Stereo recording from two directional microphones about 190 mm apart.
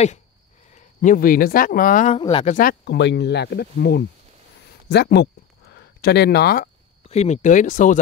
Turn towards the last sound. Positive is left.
turn(degrees=40)  # may be behind; listen again after turning